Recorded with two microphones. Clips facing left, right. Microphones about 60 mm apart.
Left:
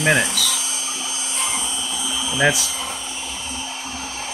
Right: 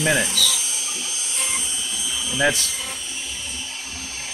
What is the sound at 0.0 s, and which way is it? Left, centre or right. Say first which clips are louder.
Speech: left 3 dB; left.